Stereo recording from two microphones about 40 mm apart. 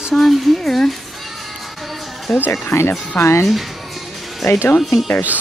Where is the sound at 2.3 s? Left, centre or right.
Left.